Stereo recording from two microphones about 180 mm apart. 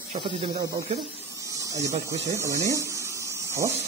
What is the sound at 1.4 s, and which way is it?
Electric toothbrush, 20° right (ahead or behind).